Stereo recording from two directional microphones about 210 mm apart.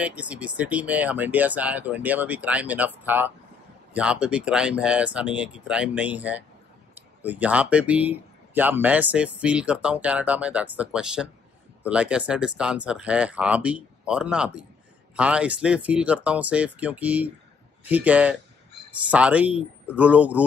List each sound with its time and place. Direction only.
0.0 s speech: 5° right (ahead or behind)